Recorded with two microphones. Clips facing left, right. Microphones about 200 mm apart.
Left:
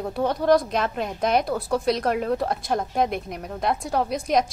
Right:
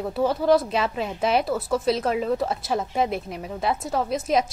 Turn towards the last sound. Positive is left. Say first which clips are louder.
# even
turn(degrees=0)  # may be behind; listen again after turning